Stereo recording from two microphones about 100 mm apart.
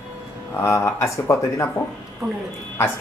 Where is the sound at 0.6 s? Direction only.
25° left (ahead or behind).